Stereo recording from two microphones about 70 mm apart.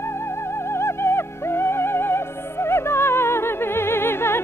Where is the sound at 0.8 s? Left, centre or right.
Left.